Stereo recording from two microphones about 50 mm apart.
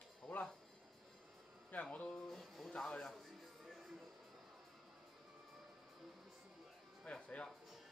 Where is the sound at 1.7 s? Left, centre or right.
Left.